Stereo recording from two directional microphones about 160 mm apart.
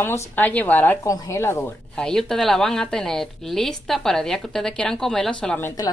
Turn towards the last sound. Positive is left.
turn(degrees=5)  # may be behind; listen again after turning